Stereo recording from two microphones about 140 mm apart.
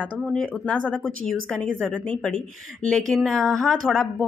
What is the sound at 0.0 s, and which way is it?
Speech, 10° left (ahead or behind).